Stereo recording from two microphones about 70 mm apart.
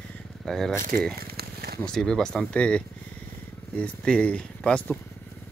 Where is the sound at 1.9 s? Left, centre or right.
Centre.